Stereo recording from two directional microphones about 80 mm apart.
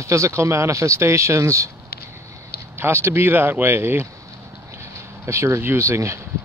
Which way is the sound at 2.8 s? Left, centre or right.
Right.